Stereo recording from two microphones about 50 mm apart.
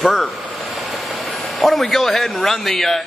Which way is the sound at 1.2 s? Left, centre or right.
Centre.